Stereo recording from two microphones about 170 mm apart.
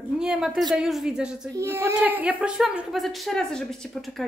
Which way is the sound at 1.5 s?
15° right (ahead or behind).